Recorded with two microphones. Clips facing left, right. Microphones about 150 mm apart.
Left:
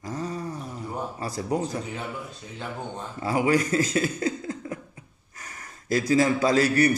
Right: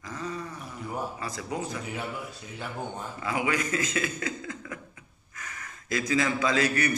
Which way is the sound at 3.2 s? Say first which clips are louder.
Left 7 dB; 40° left (ahead or behind).